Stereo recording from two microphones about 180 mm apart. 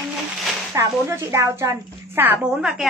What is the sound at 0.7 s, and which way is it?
A woman's voice, 15° right (ahead or behind).